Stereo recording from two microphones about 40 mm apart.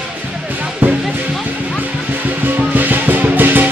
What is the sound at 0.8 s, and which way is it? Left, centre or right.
Music, right.